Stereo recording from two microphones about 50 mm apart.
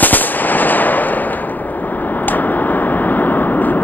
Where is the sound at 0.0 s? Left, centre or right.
Left.